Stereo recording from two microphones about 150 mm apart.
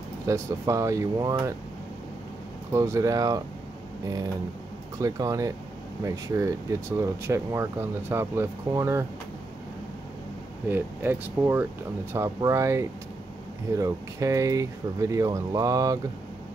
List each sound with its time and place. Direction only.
0.3 s speech: 20° right (ahead or behind)
2.7 s speech: 20° right (ahead or behind)
5.0 s speech: 25° right (ahead or behind)
10.7 s speech: 15° right (ahead or behind)